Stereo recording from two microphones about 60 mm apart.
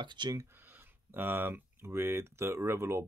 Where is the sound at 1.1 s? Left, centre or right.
Right.